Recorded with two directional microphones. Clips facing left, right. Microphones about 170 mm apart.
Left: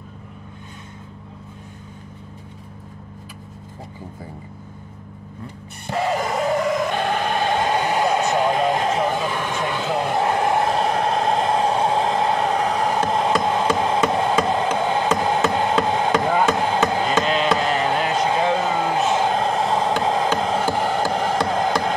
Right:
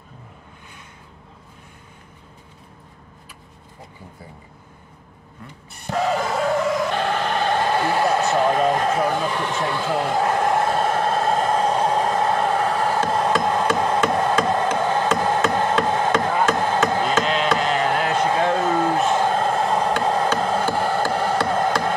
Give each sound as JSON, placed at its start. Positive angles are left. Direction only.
{"t": 5.9, "sound": "vehicle", "side_deg": 10}
{"t": 12.1, "sound": "a sound", "side_deg": 20}
{"t": 19.1, "sound": "music", "side_deg": 20}